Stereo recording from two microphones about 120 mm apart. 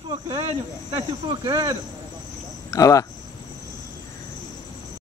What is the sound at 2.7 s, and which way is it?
Speech, 30° left (ahead or behind).